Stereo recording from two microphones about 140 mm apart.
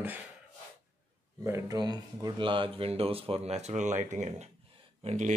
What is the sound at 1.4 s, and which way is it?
Speech, 20° right (ahead or behind).